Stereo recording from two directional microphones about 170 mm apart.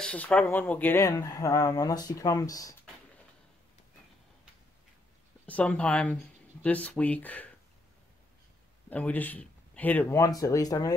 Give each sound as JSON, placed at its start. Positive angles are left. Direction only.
{"t": 0.0, "sound": "speech", "side_deg": 5}
{"t": 5.5, "sound": "speech", "side_deg": 10}
{"t": 8.9, "sound": "speech", "side_deg": 10}